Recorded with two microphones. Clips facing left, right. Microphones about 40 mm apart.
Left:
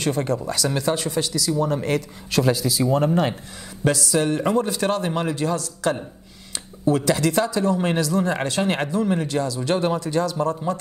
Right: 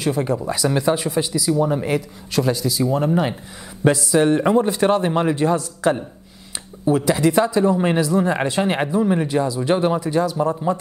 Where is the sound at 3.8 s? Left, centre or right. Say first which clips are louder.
Right 5 dB; right.